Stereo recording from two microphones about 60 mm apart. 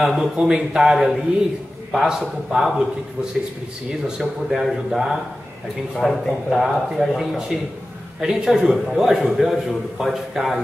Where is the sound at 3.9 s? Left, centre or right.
Centre.